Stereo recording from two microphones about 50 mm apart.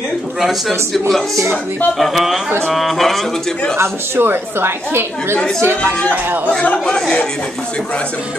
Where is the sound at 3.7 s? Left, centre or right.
Right.